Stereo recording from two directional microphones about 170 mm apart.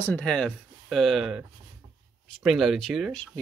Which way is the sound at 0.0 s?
5° left (ahead or behind).